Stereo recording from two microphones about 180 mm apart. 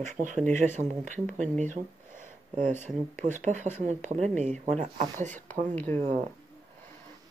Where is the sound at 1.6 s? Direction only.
45° right (ahead or behind).